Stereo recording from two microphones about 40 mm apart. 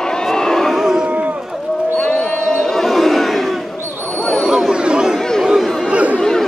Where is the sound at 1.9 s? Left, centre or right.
Left; by 3.6 s centre.